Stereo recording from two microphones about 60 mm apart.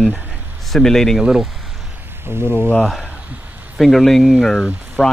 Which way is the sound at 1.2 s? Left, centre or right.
Centre.